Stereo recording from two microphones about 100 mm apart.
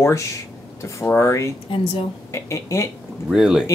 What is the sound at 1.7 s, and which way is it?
Speech, 65° left (ahead or behind).